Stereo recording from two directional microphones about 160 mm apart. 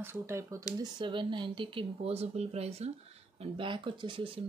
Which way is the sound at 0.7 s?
30° right (ahead or behind).